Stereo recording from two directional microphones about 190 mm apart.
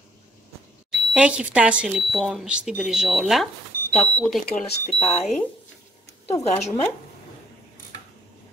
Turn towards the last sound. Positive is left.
turn(degrees=15)  # may be behind; listen again after turning